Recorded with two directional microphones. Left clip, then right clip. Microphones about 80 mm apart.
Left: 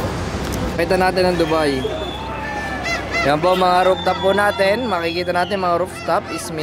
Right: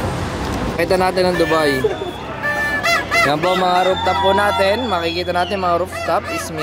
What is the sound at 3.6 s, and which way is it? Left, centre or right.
Speech, centre.